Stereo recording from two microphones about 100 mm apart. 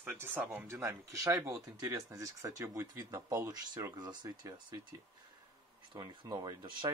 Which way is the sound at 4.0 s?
45° right (ahead or behind).